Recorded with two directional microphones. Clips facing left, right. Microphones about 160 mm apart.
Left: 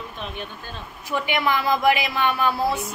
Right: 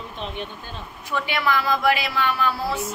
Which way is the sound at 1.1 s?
20° left (ahead or behind).